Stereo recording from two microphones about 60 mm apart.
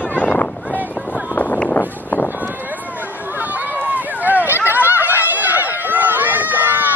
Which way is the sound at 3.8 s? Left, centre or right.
Right.